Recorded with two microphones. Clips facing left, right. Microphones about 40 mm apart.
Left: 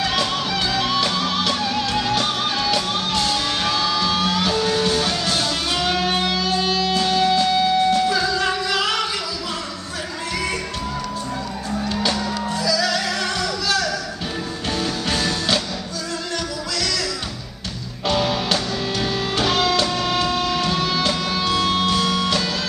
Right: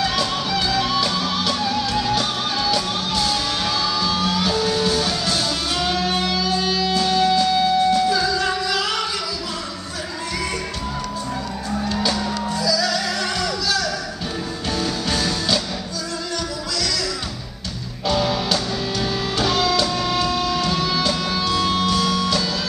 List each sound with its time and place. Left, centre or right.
0.0 s music: left
12.6 s music: left
15.0 s music: left
16.7 s music: left
18.0 s music: left